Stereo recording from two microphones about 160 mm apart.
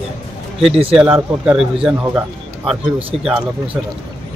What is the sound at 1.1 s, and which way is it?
Speech, 5° right (ahead or behind).